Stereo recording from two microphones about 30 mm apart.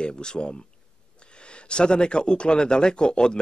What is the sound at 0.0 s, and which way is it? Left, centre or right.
Speech, left.